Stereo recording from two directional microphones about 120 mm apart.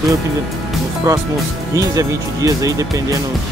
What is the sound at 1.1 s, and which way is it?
Speech, 25° right (ahead or behind).